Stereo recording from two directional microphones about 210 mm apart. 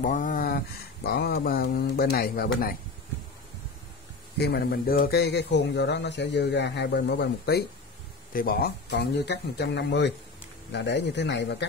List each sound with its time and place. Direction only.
0.0 s speech: 40° left (ahead or behind)
4.4 s speech: 50° left (ahead or behind)